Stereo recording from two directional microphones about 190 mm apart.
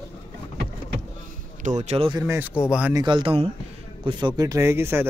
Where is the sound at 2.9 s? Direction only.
25° right (ahead or behind).